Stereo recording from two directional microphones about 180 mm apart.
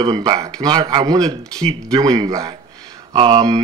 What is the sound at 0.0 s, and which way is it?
Speech, 20° right (ahead or behind).